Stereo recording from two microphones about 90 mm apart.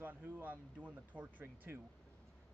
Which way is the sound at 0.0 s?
20° right (ahead or behind).